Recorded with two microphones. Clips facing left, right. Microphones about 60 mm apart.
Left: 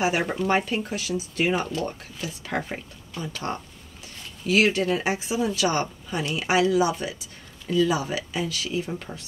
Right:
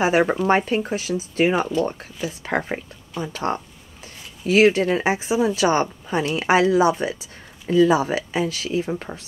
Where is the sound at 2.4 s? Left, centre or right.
Right.